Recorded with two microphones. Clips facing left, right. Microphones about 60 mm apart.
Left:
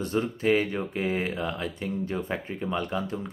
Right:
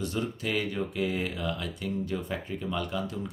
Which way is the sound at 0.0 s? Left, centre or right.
Left.